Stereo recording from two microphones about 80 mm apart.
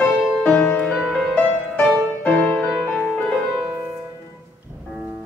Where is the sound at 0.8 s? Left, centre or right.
Centre.